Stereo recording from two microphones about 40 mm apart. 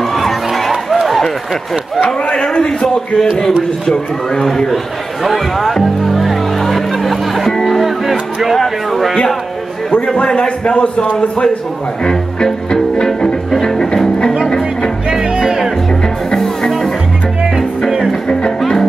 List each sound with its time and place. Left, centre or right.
0.0 s a sound: centre
1.0 s run: centre
2.2 s a man's voice: left
5.2 s music: centre
8.5 s speech: centre
10.0 s a man's voice: left
12.9 s music: left
15.0 s music: centre
16.3 s music: centre
17.6 s music: centre
18.6 s music: centre